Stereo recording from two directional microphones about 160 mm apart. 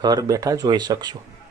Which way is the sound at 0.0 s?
25° right (ahead or behind).